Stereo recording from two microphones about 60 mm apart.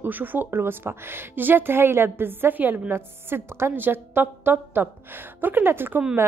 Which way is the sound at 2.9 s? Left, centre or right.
Right.